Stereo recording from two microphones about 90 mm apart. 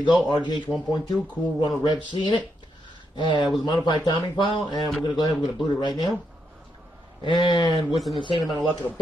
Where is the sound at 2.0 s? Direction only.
55° left (ahead or behind).